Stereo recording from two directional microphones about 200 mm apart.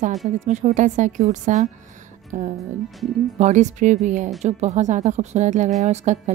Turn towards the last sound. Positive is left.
turn(degrees=-35)  # may be behind; listen again after turning